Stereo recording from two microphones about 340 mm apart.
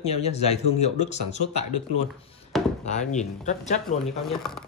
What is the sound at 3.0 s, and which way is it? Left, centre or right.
Speech, centre.